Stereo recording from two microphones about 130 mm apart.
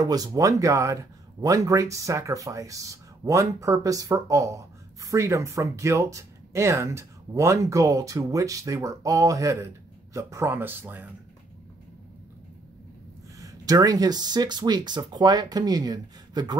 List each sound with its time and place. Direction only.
0.0 s speech: 30° right (ahead or behind)
13.4 s speech: 25° right (ahead or behind)